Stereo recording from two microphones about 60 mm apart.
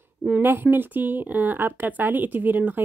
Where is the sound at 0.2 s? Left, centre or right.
Right.